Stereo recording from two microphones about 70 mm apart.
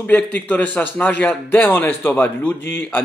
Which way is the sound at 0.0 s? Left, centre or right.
Left.